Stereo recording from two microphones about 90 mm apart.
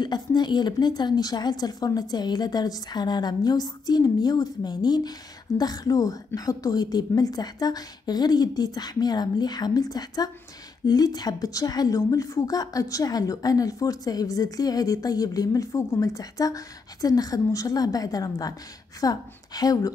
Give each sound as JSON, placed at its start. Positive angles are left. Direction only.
{"t": 0.0, "sound": "a woman's voice", "side_deg": 55}